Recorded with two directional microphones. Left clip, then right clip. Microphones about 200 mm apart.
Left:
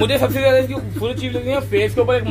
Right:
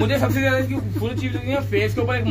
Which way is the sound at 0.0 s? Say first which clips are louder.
Left 5 dB; 25° left (ahead or behind).